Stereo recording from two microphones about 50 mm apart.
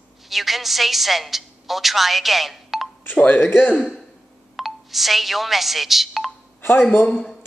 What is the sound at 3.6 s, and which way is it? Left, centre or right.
Speech, left.